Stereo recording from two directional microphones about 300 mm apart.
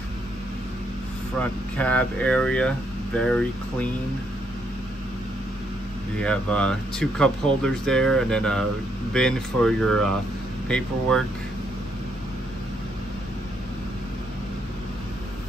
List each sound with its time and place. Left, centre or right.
1.4 s speech: centre
6.1 s speech: centre